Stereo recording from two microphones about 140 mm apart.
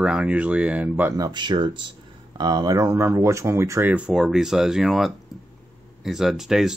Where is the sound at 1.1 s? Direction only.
30° right (ahead or behind); by 6.7 s 5° right (ahead or behind).